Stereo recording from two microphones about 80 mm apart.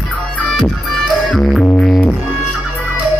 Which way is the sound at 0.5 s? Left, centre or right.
Centre.